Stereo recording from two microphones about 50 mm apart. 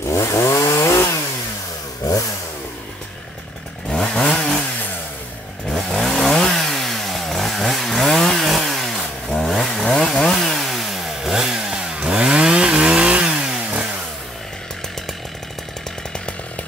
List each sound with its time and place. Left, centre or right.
0.1 s chainsaw: left
3.9 s chainsaw: centre
5.9 s chainsaw: centre; by 13.8 s right